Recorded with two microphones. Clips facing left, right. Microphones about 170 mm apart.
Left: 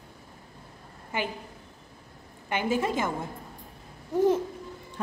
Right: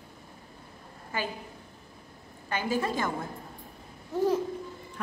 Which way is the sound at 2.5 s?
20° left (ahead or behind).